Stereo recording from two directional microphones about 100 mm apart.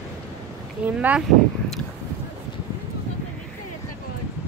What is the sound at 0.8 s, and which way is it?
Speech, 10° right (ahead or behind).